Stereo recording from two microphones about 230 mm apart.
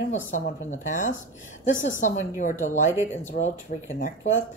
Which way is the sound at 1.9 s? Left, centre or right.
Left.